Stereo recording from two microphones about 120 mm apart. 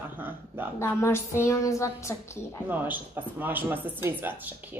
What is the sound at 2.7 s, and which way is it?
Speech, 15° right (ahead or behind).